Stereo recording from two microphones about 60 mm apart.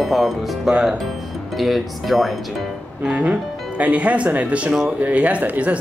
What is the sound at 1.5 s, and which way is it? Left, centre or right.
Speech, centre.